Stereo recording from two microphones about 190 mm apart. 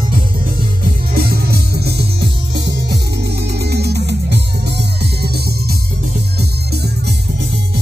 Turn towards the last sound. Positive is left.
turn(degrees=-60)  # may be behind; listen again after turning